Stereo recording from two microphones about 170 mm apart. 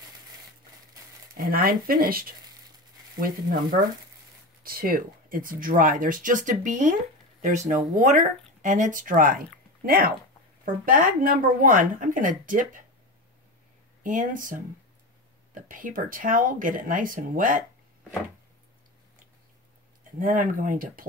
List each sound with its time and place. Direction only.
1.3 s speech: 60° right (ahead or behind)
14.0 s speech: 50° right (ahead or behind)
20.2 s speech: 55° right (ahead or behind)